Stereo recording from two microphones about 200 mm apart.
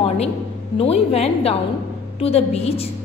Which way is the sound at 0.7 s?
30° left (ahead or behind).